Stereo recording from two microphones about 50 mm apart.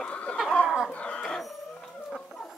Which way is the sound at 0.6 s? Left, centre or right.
Centre.